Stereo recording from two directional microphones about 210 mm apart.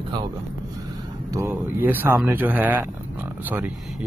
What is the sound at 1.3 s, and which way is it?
Speech, 10° right (ahead or behind).